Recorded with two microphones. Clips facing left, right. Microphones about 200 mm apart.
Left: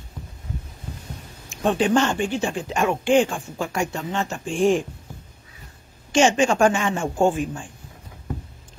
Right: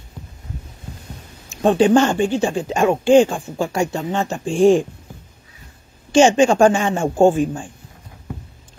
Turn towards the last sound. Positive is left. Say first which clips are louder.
# right 6 dB
turn(degrees=-35)  # may be behind; listen again after turning